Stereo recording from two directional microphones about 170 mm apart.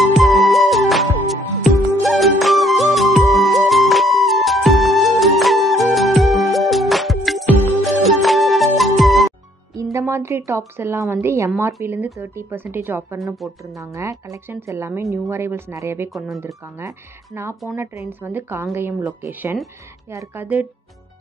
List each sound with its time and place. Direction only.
0.0 s music: centre (ahead or behind)
9.9 s music: 15° right (ahead or behind)
10.8 s speech: 15° right (ahead or behind)